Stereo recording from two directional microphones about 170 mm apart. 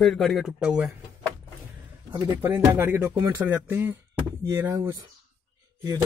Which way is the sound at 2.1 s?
15° right (ahead or behind).